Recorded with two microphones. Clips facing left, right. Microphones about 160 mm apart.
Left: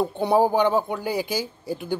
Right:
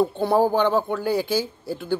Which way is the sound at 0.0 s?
15° left (ahead or behind).